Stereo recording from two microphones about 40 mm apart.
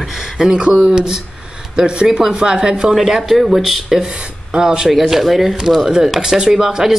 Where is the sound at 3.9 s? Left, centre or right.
Right.